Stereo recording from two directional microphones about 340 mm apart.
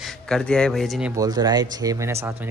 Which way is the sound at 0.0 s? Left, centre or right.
Centre.